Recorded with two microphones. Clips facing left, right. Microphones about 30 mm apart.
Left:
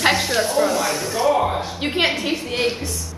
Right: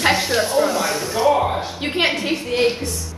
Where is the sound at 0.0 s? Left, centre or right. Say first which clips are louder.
Right 1 dB; centre.